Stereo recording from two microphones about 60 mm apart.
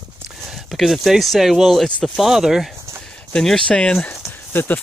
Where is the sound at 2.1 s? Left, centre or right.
Centre.